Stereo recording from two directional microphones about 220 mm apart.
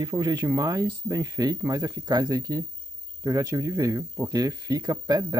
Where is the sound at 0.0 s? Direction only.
15° right (ahead or behind).